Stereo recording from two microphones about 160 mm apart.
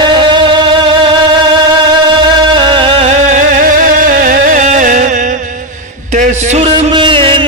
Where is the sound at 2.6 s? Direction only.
30° right (ahead or behind).